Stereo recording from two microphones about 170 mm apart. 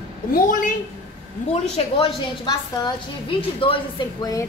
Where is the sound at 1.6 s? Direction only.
40° left (ahead or behind).